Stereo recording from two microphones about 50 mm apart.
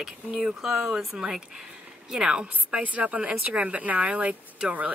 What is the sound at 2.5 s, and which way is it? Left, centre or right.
Speech, right.